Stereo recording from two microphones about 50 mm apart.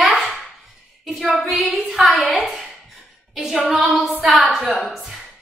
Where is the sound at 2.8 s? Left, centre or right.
Centre.